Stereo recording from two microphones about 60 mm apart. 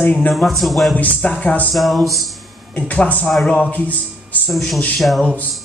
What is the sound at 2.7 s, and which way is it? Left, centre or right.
Speech, left.